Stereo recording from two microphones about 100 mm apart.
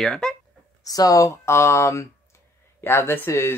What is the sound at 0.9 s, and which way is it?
Speech, 35° left (ahead or behind).